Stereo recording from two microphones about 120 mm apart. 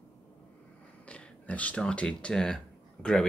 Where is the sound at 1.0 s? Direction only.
10° left (ahead or behind).